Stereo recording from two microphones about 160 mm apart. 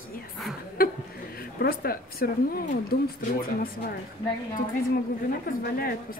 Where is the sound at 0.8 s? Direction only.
65° left (ahead or behind).